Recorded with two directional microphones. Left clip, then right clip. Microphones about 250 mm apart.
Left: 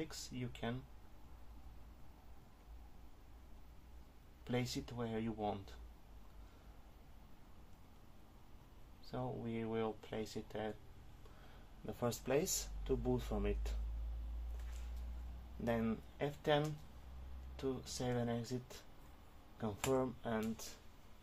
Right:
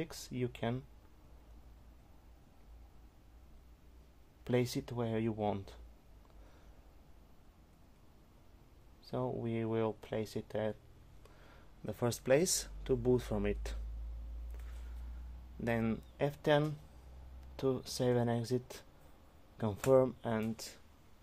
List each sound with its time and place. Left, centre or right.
0.0 s speech: right
4.5 s speech: right
9.0 s speech: right
11.8 s speech: right
15.6 s speech: right
19.9 s speech: right